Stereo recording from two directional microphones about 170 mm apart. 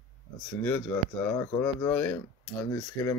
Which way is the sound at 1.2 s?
15° left (ahead or behind).